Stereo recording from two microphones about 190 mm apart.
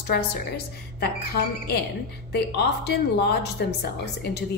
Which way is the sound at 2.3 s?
60° left (ahead or behind).